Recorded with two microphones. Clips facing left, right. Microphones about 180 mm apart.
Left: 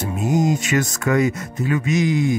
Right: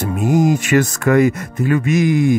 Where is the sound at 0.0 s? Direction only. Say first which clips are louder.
Right 4 dB; 60° right (ahead or behind).